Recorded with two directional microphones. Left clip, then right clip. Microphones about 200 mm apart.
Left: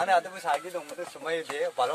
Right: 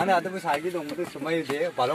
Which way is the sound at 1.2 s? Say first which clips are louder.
Right 3 dB; 10° left (ahead or behind).